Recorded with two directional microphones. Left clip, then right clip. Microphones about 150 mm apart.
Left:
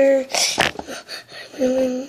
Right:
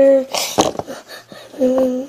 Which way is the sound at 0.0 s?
Centre (ahead or behind).